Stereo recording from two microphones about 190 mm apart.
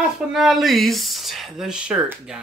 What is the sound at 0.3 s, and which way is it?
Speech, centre (ahead or behind).